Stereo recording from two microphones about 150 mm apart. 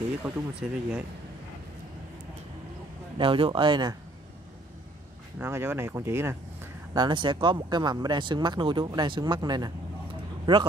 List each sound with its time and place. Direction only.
0.2 s speech: 10° right (ahead or behind)
3.2 s speech: 35° right (ahead or behind)
5.4 s speech: 15° right (ahead or behind)
6.9 s a man's voice: 30° right (ahead or behind)